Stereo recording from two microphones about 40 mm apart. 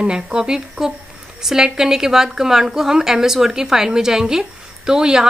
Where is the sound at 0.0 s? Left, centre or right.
Right.